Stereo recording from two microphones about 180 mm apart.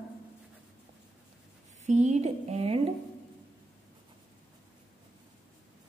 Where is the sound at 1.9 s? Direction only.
40° right (ahead or behind).